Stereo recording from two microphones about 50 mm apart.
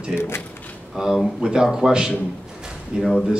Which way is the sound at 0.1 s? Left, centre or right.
Left.